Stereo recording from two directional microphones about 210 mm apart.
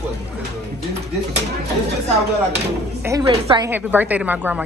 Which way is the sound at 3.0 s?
15° right (ahead or behind).